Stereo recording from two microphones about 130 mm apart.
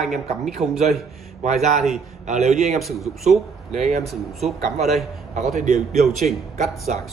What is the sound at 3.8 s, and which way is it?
Speech, 55° right (ahead or behind).